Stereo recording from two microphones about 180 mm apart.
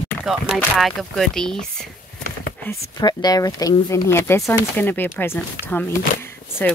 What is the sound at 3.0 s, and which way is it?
Speech, 20° left (ahead or behind).